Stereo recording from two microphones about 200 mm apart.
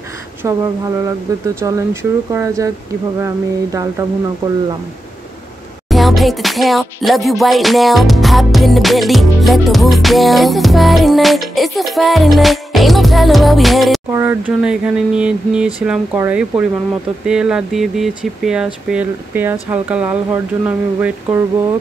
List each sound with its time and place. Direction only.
0.4 s speech: 15° right (ahead or behind)
5.9 s music: centre (ahead or behind)
14.1 s music: 10° right (ahead or behind)
17.3 s speech: 5° right (ahead or behind)